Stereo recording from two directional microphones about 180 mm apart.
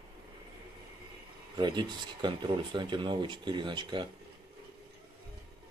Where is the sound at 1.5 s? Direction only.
25° right (ahead or behind).